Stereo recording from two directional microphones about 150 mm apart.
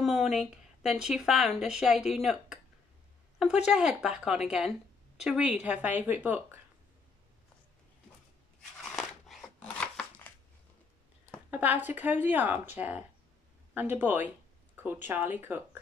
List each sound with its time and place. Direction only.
0.0 s speech: centre (ahead or behind)
3.4 s speech: 50° left (ahead or behind)
3.7 s a woman's voice: 5° right (ahead or behind)
8.8 s scissors: centre (ahead or behind)
11.5 s a woman's voice: 10° right (ahead or behind)